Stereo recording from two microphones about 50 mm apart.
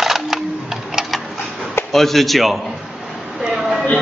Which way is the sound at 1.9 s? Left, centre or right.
Centre.